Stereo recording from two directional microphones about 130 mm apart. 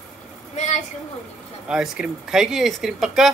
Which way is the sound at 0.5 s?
60° left (ahead or behind).